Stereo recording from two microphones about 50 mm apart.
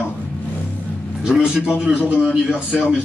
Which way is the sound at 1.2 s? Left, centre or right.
Centre.